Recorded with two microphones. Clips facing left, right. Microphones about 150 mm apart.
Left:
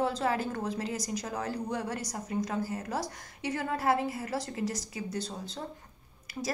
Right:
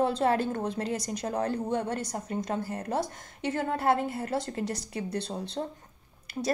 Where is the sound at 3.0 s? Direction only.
55° right (ahead or behind).